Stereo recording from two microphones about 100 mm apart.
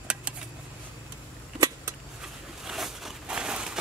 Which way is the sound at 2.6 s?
5° right (ahead or behind).